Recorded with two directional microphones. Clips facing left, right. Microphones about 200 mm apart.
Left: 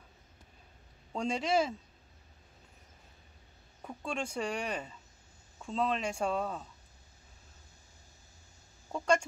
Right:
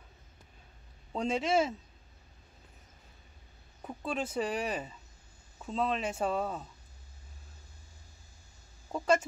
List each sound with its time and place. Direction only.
1.1 s speech: centre (ahead or behind)
3.8 s speech: 5° right (ahead or behind)
8.9 s speech: 5° right (ahead or behind)